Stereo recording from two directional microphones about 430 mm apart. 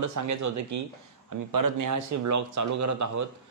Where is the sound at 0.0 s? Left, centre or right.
Right.